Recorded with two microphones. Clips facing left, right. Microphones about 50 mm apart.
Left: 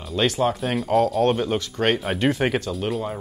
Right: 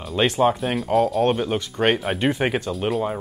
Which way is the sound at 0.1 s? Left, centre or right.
Centre.